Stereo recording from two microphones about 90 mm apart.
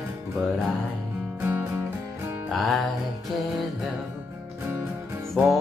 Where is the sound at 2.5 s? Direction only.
Centre (ahead or behind).